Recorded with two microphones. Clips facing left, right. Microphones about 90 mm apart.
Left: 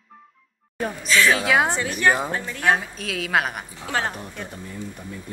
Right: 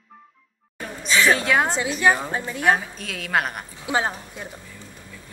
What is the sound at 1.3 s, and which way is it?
Speech, 5° left (ahead or behind).